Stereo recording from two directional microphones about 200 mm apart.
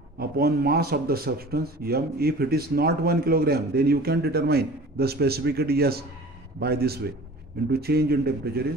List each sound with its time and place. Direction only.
0.2 s speech: 50° right (ahead or behind)